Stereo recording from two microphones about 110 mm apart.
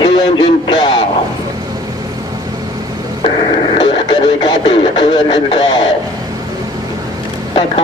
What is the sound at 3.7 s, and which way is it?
Radio, 45° left (ahead or behind).